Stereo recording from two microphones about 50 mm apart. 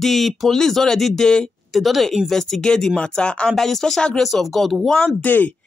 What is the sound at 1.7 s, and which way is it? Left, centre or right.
Speech, centre.